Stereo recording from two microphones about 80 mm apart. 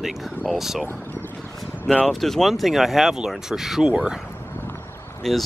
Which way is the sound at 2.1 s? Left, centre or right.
Centre.